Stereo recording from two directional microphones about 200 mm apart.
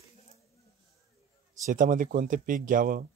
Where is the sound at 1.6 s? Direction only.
40° right (ahead or behind).